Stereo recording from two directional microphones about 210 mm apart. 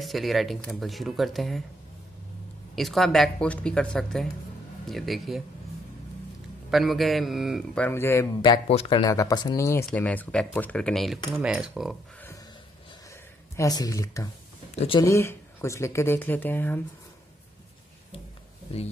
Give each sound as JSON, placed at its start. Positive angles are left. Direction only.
{"t": 0.0, "sound": "speech", "side_deg": 0}
{"t": 2.7, "sound": "speech", "side_deg": 0}
{"t": 6.7, "sound": "speech", "side_deg": 0}
{"t": 8.4, "sound": "speech", "side_deg": 25}
{"t": 13.1, "sound": "speech", "side_deg": 15}